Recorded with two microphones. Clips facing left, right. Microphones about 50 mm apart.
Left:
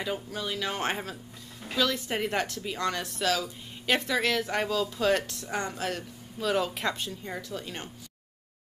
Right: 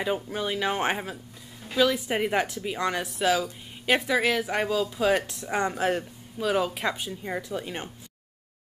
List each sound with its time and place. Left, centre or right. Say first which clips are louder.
0.0 s speech: right 5 dB; right
6.3 s speech: right 2 dB; centre